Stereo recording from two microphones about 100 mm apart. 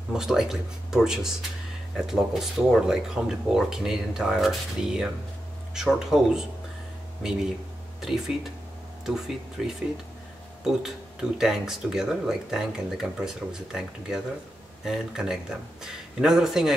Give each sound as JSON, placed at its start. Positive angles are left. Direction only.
{"t": 0.1, "sound": "speech", "side_deg": -5}
{"t": 9.6, "sound": "speech", "side_deg": -5}